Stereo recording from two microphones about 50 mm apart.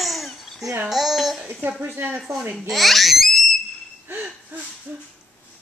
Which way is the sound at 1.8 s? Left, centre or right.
Right.